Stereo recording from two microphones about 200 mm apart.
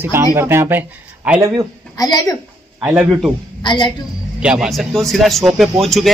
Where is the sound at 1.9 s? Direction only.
20° left (ahead or behind).